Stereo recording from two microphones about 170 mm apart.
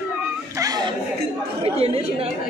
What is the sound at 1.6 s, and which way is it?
Speech, 35° right (ahead or behind).